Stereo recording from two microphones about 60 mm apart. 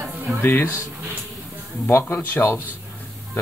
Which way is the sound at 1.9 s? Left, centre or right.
Left.